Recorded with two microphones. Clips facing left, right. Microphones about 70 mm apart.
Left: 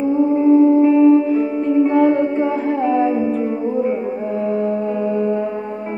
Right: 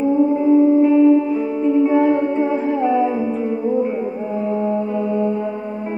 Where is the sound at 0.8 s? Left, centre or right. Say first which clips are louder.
Left 1 dB; centre.